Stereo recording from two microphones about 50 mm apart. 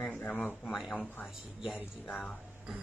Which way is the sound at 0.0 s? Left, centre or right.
Left.